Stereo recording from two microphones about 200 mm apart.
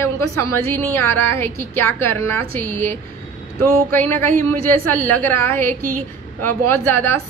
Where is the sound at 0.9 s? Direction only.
15° left (ahead or behind).